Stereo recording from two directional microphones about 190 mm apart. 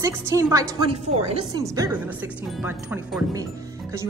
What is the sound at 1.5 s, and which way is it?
Speech, 15° right (ahead or behind).